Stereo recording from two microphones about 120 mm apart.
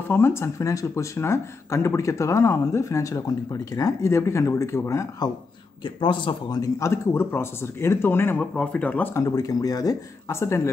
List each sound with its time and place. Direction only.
0.1 s speech: 20° left (ahead or behind)
5.9 s speech: 45° left (ahead or behind); by 10.7 s 20° left (ahead or behind)